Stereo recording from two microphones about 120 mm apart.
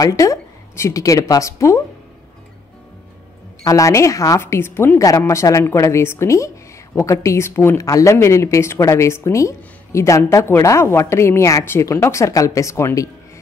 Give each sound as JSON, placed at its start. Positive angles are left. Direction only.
{"t": 0.0, "sound": "speech", "side_deg": 30}
{"t": 3.6, "sound": "speech", "side_deg": 25}